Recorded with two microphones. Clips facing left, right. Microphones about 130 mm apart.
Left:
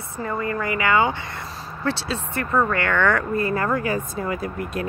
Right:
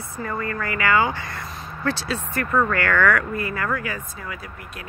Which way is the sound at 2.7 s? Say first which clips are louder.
Right 1 dB; 25° left (ahead or behind).